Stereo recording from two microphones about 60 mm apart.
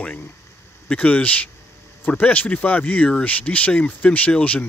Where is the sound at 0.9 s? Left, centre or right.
Left.